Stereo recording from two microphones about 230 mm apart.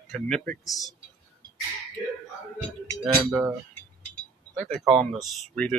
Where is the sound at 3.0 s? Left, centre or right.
Centre.